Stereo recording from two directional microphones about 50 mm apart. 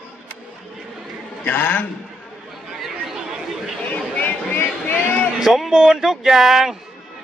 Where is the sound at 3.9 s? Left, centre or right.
Left.